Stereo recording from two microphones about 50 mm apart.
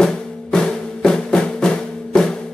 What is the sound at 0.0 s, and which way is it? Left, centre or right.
Drum, centre.